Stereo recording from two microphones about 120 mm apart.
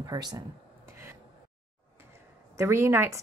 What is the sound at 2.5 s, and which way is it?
Speech, 20° right (ahead or behind).